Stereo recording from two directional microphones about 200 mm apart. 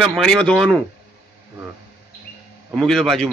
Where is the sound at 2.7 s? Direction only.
Centre (ahead or behind).